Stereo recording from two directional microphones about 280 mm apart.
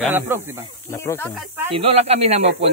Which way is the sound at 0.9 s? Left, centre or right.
Centre.